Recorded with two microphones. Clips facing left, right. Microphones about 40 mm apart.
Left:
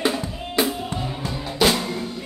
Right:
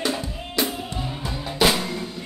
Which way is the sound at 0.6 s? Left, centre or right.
Centre.